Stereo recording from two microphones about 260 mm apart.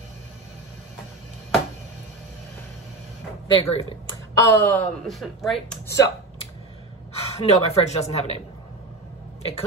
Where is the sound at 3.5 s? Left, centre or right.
Centre.